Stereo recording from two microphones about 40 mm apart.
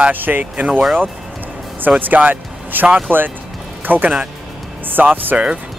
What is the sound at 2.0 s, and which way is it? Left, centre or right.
Speech, right.